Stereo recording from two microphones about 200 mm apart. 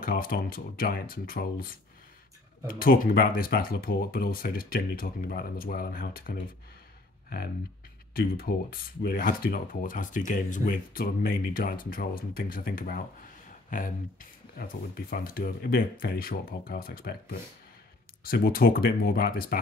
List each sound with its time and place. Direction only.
0.0 s speech: 45° left (ahead or behind)
8.1 s speech: 50° left (ahead or behind)